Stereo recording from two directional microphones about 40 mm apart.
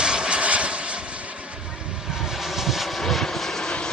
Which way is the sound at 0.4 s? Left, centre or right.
Right.